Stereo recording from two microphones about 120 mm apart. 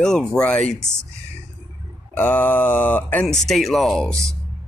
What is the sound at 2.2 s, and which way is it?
Mantra, 15° left (ahead or behind).